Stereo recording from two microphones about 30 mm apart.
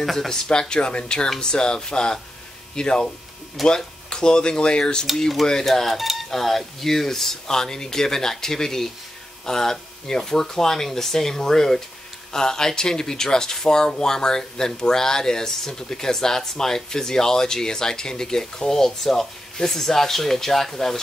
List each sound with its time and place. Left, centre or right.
0.3 s speech: left
5.7 s speech: centre